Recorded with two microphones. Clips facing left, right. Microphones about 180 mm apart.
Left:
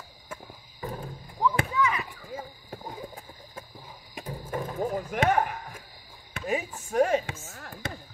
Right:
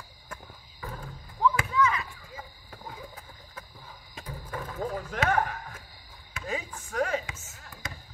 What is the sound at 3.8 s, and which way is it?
Wild animals, 20° left (ahead or behind).